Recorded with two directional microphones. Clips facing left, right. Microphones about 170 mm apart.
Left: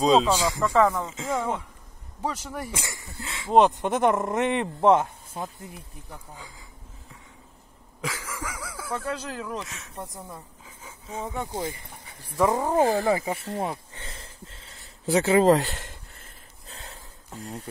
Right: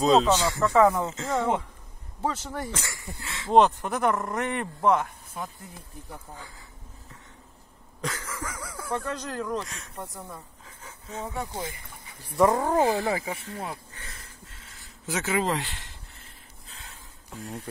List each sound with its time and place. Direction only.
0.0 s speech: 10° left (ahead or behind)
0.7 s speech: 10° right (ahead or behind)
1.1 s speech: 10° left (ahead or behind)
3.8 s speech: 25° left (ahead or behind)
8.0 s speech: 10° left (ahead or behind)
10.6 s a sound: 10° left (ahead or behind)
12.4 s speech: 10° left (ahead or behind)
12.8 s speech: 45° left (ahead or behind)
13.1 s speech: 30° left (ahead or behind)
13.9 s a sound: 25° left (ahead or behind)